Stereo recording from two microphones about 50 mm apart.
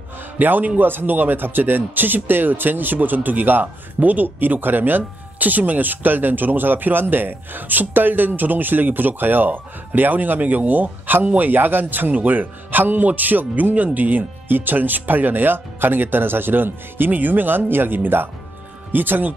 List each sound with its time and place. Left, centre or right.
0.4 s speech: right